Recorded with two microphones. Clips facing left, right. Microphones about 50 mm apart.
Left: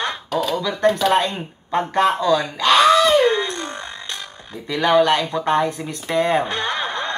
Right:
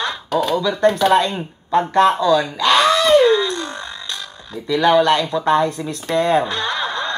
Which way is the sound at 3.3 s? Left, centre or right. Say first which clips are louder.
Right 4 dB; left.